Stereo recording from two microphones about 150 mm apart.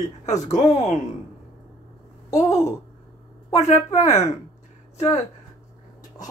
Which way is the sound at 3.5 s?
50° left (ahead or behind).